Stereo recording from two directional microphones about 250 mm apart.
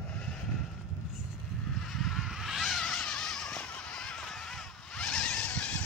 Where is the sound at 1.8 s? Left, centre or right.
Centre.